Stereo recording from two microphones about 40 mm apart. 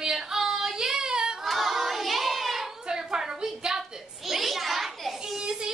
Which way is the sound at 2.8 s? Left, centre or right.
Centre.